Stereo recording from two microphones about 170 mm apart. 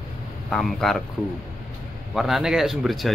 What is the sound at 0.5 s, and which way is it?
Speech, 5° left (ahead or behind).